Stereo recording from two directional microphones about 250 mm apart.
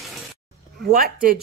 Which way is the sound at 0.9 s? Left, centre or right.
Right.